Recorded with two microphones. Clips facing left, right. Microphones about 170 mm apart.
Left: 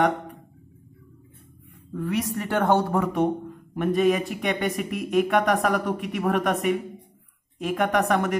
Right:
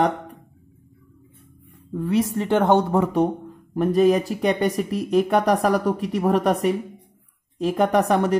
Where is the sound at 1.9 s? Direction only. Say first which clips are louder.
Right 5 dB; 25° right (ahead or behind).